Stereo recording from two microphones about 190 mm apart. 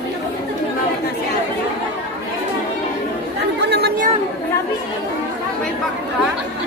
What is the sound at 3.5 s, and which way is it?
Chatter, 60° right (ahead or behind).